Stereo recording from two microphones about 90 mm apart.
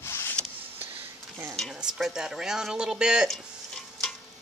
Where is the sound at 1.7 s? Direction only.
5° right (ahead or behind).